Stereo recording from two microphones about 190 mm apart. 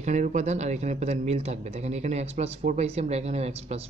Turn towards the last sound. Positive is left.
turn(degrees=-35)  # may be behind; listen again after turning